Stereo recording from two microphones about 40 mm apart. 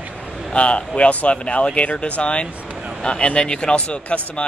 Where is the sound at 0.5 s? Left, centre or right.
Left.